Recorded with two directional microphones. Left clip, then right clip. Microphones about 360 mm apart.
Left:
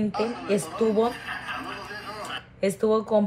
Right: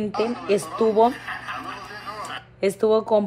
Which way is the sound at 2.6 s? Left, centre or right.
Right.